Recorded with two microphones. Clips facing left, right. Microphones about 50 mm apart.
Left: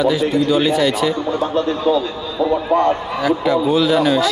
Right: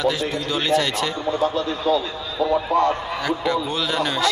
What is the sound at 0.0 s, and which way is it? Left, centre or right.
Speech, centre.